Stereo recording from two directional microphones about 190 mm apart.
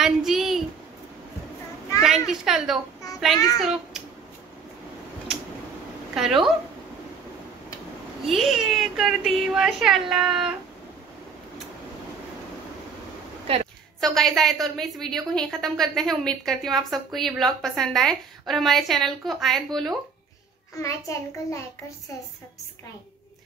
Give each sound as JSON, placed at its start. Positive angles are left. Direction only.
{"t": 0.0, "sound": "a sound", "side_deg": 0}
{"t": 2.0, "sound": "a child's voice", "side_deg": 0}
{"t": 6.1, "sound": "a woman's voice", "side_deg": 0}
{"t": 8.3, "sound": "a woman's voice", "side_deg": 0}
{"t": 14.0, "sound": "a woman's voice", "side_deg": 0}
{"t": 20.8, "sound": "a child's voice", "side_deg": 15}